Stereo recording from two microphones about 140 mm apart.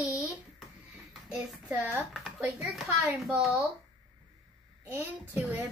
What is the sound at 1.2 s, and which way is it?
Speech, 5° right (ahead or behind).